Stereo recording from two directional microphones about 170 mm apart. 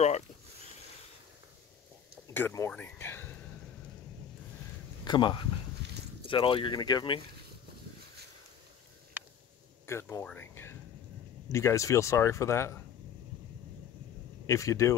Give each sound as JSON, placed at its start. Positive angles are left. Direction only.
{"t": 2.3, "sound": "speech", "side_deg": 15}
{"t": 5.0, "sound": "speech", "side_deg": 25}
{"t": 9.8, "sound": "speech", "side_deg": 15}
{"t": 14.4, "sound": "speech", "side_deg": 20}